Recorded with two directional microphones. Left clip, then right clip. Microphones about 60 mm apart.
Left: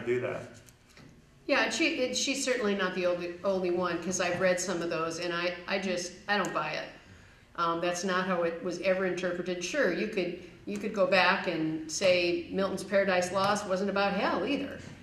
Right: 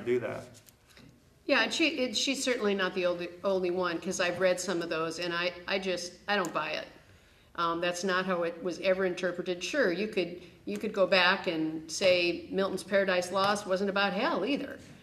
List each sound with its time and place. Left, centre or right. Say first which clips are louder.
1.5 s a woman's voice: even; centre
7.8 s a woman's voice: even; centre